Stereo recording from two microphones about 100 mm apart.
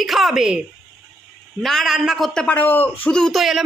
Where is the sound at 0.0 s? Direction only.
Centre (ahead or behind).